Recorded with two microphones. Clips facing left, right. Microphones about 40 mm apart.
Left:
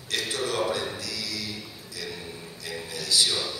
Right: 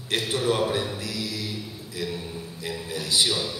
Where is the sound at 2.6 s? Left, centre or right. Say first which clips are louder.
Right 3 dB; right.